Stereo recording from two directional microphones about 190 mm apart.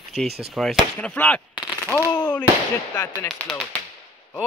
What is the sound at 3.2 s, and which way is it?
Speech, centre (ahead or behind).